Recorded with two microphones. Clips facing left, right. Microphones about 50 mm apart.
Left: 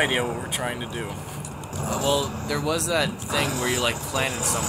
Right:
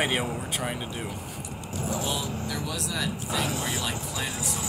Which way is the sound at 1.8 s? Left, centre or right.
Left.